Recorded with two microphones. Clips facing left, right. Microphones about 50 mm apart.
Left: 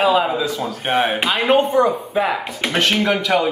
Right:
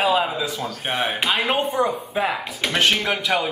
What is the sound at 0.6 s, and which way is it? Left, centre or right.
Speech, centre.